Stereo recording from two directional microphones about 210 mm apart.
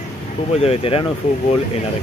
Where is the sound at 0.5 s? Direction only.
30° left (ahead or behind).